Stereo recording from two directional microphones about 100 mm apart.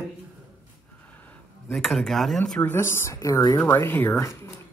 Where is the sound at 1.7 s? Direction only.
Centre (ahead or behind).